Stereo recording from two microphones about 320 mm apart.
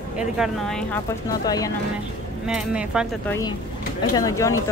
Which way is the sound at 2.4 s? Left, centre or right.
Centre.